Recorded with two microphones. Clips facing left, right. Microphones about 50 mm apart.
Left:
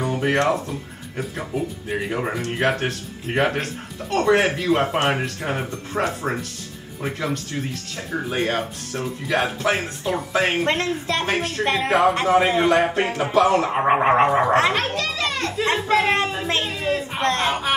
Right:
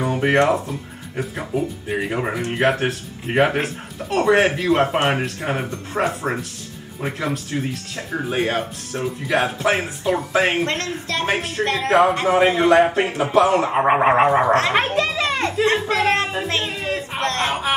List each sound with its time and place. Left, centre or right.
0.0 s speech: centre
10.6 s speech: centre
11.2 s speech: centre
11.6 s speech: centre
11.9 s speech: centre
12.3 s speech: centre
14.7 s children playing: right
15.9 s speech: centre
16.6 s a sound: centre
17.5 s speech: centre